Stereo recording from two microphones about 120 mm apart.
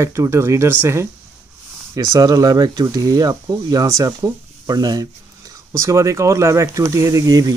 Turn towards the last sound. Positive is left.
turn(degrees=-30)  # may be behind; listen again after turning